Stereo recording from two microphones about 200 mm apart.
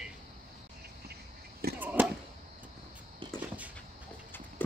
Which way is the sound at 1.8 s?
10° right (ahead or behind).